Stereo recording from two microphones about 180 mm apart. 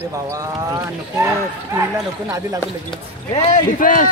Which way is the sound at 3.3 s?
40° left (ahead or behind).